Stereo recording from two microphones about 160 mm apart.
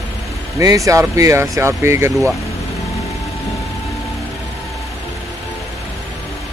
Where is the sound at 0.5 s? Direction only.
20° right (ahead or behind).